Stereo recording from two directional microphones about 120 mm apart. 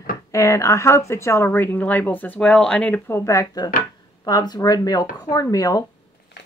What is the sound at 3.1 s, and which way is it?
Speech, 25° left (ahead or behind).